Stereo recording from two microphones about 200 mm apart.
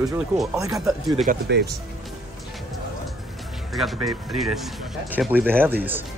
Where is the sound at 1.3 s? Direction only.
40° right (ahead or behind).